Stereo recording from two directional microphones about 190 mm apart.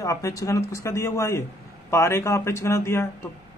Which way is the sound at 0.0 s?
15° left (ahead or behind).